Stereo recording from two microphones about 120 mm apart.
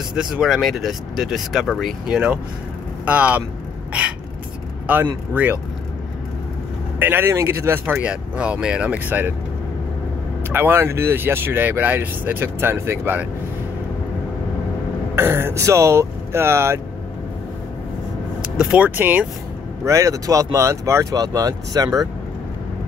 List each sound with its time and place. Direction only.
0.1 s speech: 5° right (ahead or behind)
4.8 s speech: 15° right (ahead or behind)
7.0 s speech: 15° right (ahead or behind)
10.5 s speech: 20° right (ahead or behind)
15.1 s speech: 20° right (ahead or behind)
18.6 s speech: 10° right (ahead or behind)
19.8 s speech: 25° right (ahead or behind)